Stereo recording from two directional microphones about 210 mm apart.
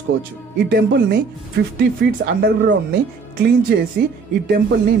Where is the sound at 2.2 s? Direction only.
55° right (ahead or behind).